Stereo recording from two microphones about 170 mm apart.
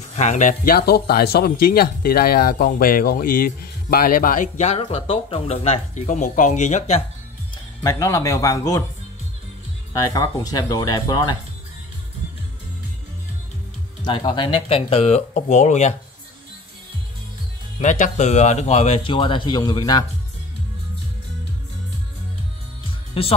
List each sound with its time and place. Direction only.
0.1 s speech: 45° left (ahead or behind)
7.5 s speech: 20° left (ahead or behind)
9.9 s speech: 20° left (ahead or behind)
14.0 s a man's voice: 30° left (ahead or behind); by 15.9 s 45° left (ahead or behind)
17.7 s a man's voice: 45° left (ahead or behind); by 20.1 s 25° left (ahead or behind)
23.2 s a man's voice: 35° left (ahead or behind)